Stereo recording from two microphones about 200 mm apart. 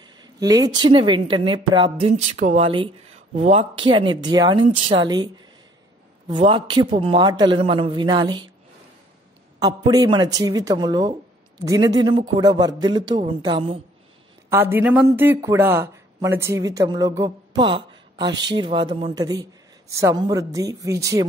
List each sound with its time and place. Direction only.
0.0 s speech: 20° right (ahead or behind)
2.3 s a man's voice: 35° right (ahead or behind)
9.6 s a man's voice: 20° right (ahead or behind)
14.5 s speech: 10° right (ahead or behind)